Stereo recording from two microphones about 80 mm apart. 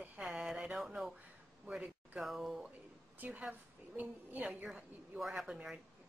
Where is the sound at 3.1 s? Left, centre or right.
Centre.